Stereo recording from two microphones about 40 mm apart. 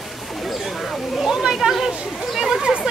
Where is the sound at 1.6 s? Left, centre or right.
Right.